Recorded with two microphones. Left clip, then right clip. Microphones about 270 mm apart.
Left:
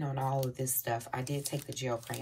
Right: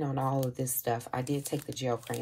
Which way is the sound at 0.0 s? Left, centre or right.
Centre.